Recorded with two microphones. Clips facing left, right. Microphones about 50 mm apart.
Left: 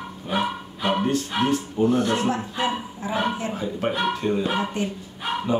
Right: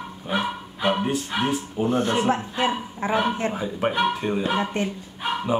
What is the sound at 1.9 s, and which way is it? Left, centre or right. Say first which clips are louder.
Speech: right 3 dB; right.